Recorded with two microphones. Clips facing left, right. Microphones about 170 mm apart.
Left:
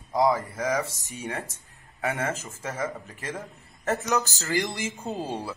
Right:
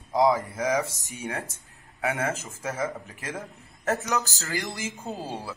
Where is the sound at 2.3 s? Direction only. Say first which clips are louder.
Right 1 dB; 20° right (ahead or behind).